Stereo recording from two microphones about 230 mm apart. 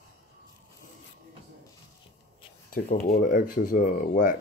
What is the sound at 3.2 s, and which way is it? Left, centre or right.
Speech, left.